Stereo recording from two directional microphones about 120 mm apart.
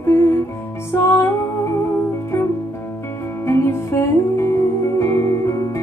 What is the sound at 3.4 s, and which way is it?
Music, 20° left (ahead or behind).